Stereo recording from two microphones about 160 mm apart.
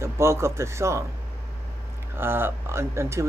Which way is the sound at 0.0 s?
15° right (ahead or behind).